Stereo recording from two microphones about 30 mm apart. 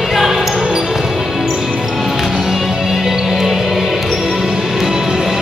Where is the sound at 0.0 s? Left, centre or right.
Centre.